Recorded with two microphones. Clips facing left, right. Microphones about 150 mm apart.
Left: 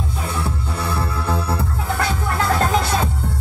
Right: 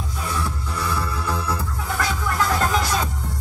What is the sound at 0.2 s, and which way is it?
Music, 25° left (ahead or behind).